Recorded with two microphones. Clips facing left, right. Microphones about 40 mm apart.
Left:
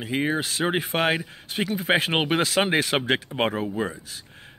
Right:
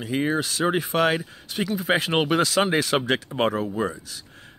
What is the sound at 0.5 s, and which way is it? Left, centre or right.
Speech, left.